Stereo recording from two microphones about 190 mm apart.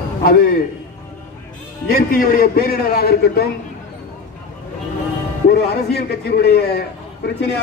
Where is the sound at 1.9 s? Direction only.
50° left (ahead or behind).